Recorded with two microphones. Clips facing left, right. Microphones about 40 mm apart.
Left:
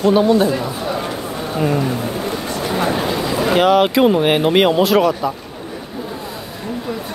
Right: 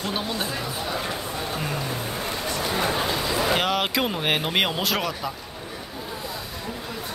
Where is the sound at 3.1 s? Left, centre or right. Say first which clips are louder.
Left 7 dB; centre.